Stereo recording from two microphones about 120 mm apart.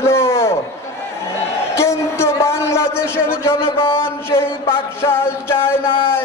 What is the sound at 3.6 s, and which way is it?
Speech, 45° left (ahead or behind).